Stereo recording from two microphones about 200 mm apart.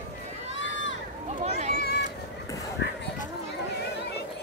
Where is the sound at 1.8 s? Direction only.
55° left (ahead or behind).